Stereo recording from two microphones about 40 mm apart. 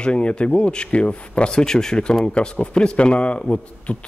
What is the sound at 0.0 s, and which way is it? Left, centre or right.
Speech, left.